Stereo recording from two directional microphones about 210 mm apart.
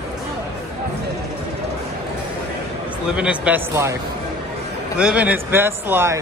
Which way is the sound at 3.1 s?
5° right (ahead or behind).